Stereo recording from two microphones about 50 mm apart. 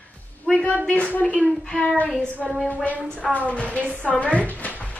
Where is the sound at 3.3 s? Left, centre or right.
Left.